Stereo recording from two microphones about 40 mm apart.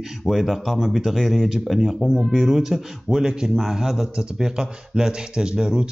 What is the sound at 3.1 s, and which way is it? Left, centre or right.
Speech, centre.